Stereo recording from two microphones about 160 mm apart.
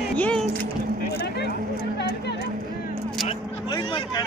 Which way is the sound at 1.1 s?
90° left.